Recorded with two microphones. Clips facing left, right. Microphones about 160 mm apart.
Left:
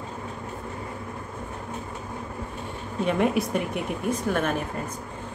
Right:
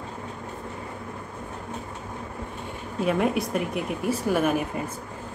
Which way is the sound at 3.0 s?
Centre (ahead or behind).